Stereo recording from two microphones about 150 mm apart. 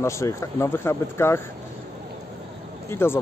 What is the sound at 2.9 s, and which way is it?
Speech, 15° left (ahead or behind).